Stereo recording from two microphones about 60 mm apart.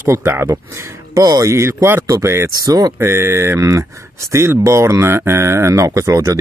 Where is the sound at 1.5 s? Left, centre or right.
Right.